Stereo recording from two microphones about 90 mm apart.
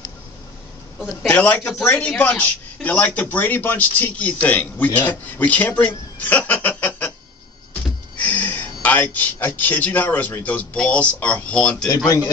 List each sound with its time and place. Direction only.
1.3 s speech: 20° left (ahead or behind)
8.2 s speech: 20° left (ahead or behind)